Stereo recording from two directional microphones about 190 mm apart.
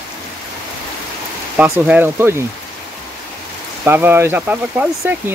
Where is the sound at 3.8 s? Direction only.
10° right (ahead or behind).